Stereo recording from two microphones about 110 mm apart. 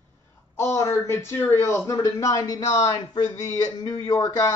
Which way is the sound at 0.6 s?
25° left (ahead or behind).